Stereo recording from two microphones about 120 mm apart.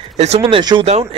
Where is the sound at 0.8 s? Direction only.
55° right (ahead or behind).